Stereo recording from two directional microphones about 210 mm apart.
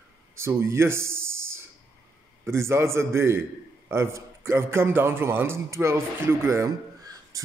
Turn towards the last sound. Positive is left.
turn(degrees=-15)  # may be behind; listen again after turning